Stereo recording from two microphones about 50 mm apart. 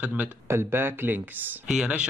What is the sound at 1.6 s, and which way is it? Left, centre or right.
Speech, centre.